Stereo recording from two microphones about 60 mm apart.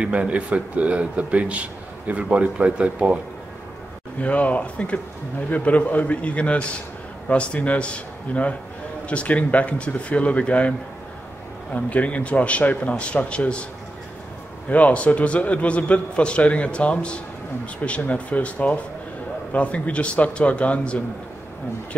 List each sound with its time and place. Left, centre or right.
0.0 s a man's voice: right
4.2 s a man's voice: left
11.7 s a man's voice: left
14.7 s a man's voice: left